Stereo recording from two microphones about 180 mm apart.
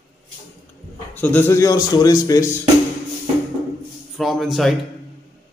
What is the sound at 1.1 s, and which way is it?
Speech, 10° left (ahead or behind).